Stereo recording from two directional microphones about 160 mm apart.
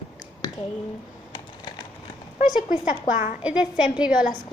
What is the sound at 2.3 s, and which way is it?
A woman's voice, 50° left (ahead or behind).